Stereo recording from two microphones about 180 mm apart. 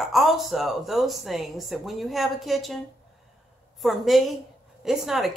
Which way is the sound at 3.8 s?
Centre (ahead or behind).